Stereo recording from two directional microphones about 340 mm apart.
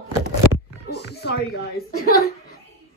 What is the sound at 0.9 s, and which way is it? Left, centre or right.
A woman's voice, left.